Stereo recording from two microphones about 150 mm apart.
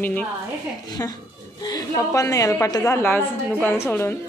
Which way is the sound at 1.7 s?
25° left (ahead or behind).